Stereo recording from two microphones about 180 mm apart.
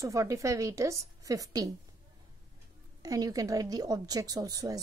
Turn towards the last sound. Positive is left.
turn(degrees=-20)  # may be behind; listen again after turning